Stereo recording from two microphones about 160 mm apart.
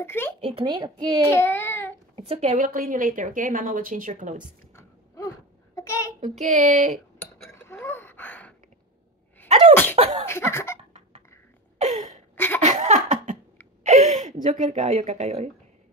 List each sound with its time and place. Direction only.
0.0 s a sound: 15° left (ahead or behind)
0.4 s a child's voice: 35° right (ahead or behind)
1.2 s child singing: 15° left (ahead or behind)
2.1 s a woman's voice: 40° right (ahead or behind)
4.7 s a sound: 20° left (ahead or behind)
5.8 s a child's voice: 20° left (ahead or behind)
6.2 s child singing: 50° right (ahead or behind)
7.5 s a sound: 15° left (ahead or behind)
9.5 s sneeze: 45° right (ahead or behind)
10.2 s a sound: 15° left (ahead or behind)
12.4 s laughter: 10° left (ahead or behind)
12.6 s laughter: 50° right (ahead or behind)
13.8 s a woman's voice: 50° right (ahead or behind)